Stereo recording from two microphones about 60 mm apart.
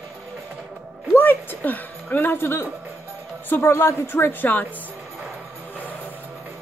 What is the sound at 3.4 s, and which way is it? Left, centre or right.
A woman's voice, left.